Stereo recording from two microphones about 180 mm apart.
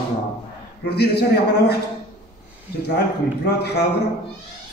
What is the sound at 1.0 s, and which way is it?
Speech, 65° left (ahead or behind).